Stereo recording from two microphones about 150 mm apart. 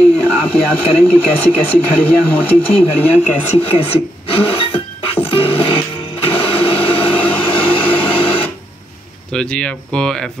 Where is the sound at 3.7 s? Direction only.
40° left (ahead or behind).